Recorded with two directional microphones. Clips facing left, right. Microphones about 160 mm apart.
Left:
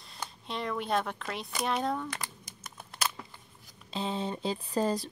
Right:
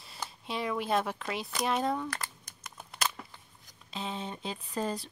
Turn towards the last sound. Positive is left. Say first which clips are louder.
# left 5 dB
turn(degrees=35)  # may be behind; listen again after turning